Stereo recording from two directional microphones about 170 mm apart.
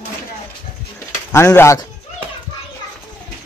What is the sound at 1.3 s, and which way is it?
Speech, 15° left (ahead or behind).